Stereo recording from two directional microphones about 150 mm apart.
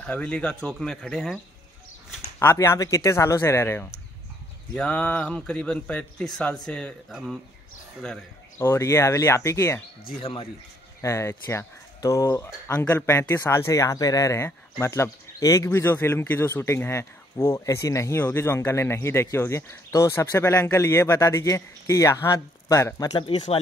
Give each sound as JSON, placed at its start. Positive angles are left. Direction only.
{"t": 0.0, "sound": "speech", "side_deg": 5}
{"t": 2.3, "sound": "speech", "side_deg": 15}
{"t": 8.5, "sound": "speech", "side_deg": 15}
{"t": 11.0, "sound": "speech", "side_deg": 20}